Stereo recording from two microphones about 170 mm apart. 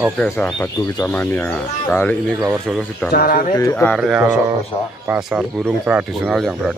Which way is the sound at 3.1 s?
60° left (ahead or behind).